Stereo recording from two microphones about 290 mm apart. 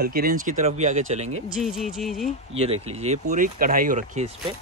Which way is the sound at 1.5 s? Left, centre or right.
Centre.